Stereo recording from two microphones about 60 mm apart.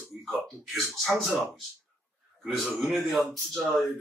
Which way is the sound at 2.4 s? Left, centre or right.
Centre.